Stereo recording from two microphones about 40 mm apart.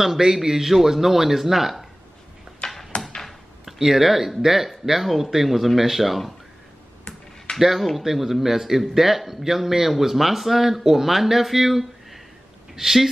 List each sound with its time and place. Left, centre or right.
0.0 s a man's voice: centre
2.9 s a sound: left
3.3 s speech: centre
7.5 s a man's voice: centre